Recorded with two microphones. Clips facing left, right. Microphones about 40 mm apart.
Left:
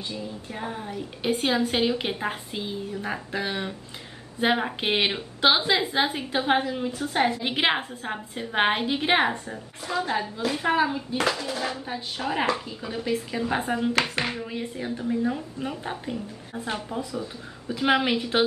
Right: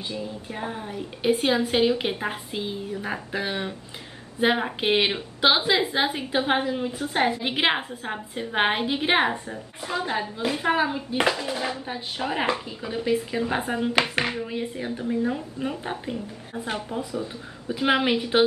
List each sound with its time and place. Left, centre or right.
0.1 s a woman's voice: centre
17.0 s speech: right
17.6 s a woman's voice: centre